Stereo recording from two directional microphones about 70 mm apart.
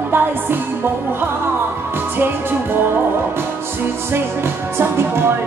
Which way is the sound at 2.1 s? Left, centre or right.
Right.